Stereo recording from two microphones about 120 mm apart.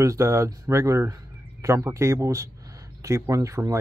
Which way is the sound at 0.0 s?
25° right (ahead or behind).